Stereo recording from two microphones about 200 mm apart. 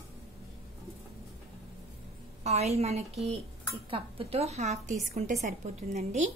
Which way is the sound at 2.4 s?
30° right (ahead or behind).